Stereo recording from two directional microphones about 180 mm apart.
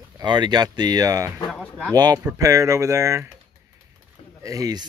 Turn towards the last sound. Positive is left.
turn(degrees=-20)  # may be behind; listen again after turning